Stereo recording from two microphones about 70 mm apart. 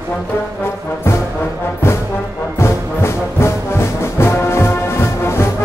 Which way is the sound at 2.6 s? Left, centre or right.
Left.